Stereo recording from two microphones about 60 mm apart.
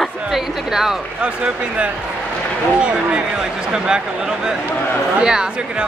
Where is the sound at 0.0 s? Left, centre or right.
Centre.